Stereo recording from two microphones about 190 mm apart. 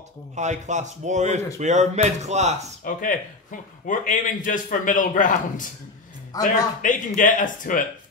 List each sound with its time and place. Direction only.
0.4 s speech: 40° right (ahead or behind)
2.8 s a man's voice: 45° left (ahead or behind)
6.8 s a man's voice: 45° left (ahead or behind)